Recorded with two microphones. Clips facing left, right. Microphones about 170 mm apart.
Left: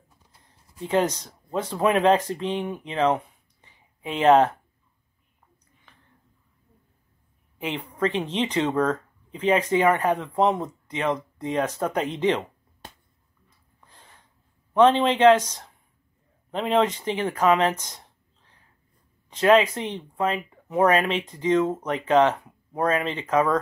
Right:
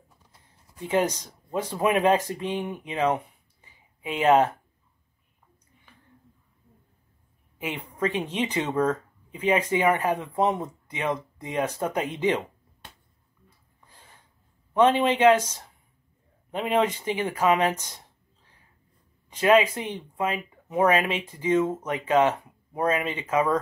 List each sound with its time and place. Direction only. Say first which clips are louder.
0.8 s speech: left 1 dB; 10° right (ahead or behind)
7.7 s speech: left 2 dB; 10° right (ahead or behind)
14.7 s speech: left 2 dB; 10° right (ahead or behind)
16.5 s speech: left 2 dB; 10° right (ahead or behind)
19.3 s speech: left 2 dB; 10° right (ahead or behind)